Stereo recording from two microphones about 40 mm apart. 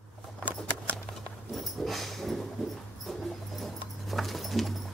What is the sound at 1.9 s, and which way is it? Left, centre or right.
Dog, centre.